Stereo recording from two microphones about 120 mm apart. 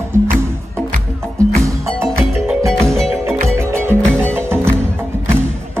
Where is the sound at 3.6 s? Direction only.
20° right (ahead or behind).